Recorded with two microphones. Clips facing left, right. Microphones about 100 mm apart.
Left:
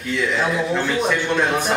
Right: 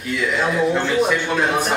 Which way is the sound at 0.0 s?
5° right (ahead or behind).